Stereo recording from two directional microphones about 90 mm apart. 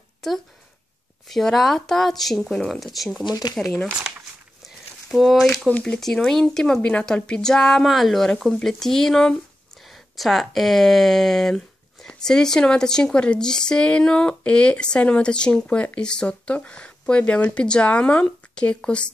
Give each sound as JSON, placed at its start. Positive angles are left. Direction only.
{"t": 1.3, "sound": "a woman's voice", "side_deg": 5}
{"t": 3.3, "sound": "speech", "side_deg": 50}
{"t": 3.5, "sound": "a woman's voice", "side_deg": 5}
{"t": 5.1, "sound": "a woman's voice", "side_deg": 0}
{"t": 5.7, "sound": "speech", "side_deg": 15}
{"t": 5.9, "sound": "a woman's voice", "side_deg": 5}